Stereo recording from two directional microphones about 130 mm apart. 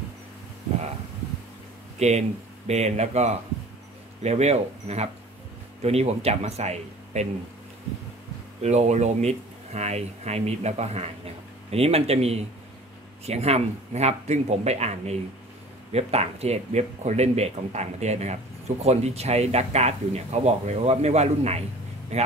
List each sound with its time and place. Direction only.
2.0 s speech: 60° right (ahead or behind)
8.6 s speech: 60° right (ahead or behind)